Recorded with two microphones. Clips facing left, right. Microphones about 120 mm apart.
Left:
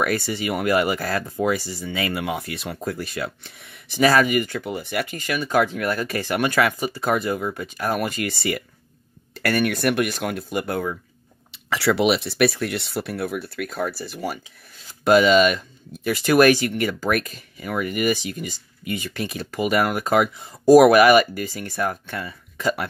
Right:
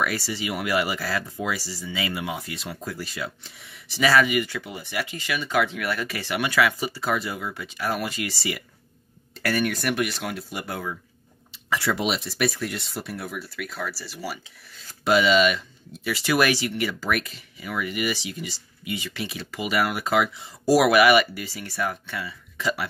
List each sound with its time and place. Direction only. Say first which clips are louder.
0.0 s speech: left 4 dB; 50° left (ahead or behind)
11.5 s speech: left 5 dB; 75° left (ahead or behind); by 22.8 s 50° left (ahead or behind)